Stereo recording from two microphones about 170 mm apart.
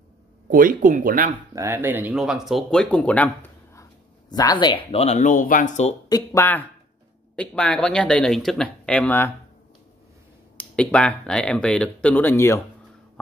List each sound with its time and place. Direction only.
0.5 s speech: 55° right (ahead or behind)
1.5 s speech: 15° right (ahead or behind); by 3.8 s 10° left (ahead or behind)
4.3 s speech: 25° left (ahead or behind)
4.9 s speech: 40° left (ahead or behind)
6.0 s speech: 20° left (ahead or behind)
10.6 s speech: 5° left (ahead or behind)